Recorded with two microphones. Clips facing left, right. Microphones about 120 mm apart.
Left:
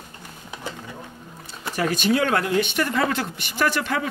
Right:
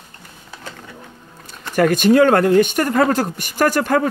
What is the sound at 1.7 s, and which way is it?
Speech, 55° right (ahead or behind).